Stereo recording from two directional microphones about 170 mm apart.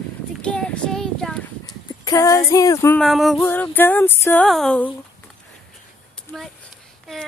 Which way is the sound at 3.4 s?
10° left (ahead or behind).